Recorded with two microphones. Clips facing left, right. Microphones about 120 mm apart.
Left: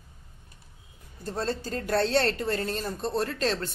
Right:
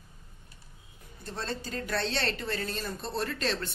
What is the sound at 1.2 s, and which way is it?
A woman's voice, 40° left (ahead or behind).